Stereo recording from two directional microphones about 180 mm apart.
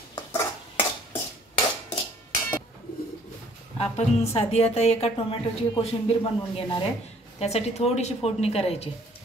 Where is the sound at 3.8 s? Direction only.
35° left (ahead or behind).